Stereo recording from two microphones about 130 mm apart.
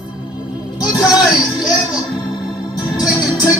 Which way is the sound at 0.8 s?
30° left (ahead or behind).